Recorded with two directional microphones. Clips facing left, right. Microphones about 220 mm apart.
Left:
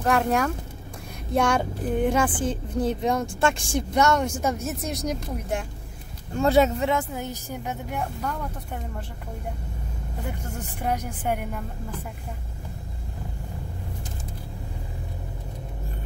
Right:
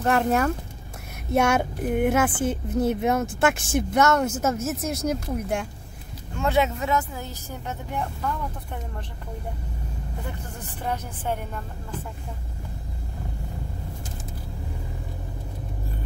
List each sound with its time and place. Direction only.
0.0 s speech: centre (ahead or behind)
6.3 s speech: 35° left (ahead or behind)
7.2 s a woman's voice: 20° left (ahead or behind)
10.8 s a woman's voice: 10° left (ahead or behind)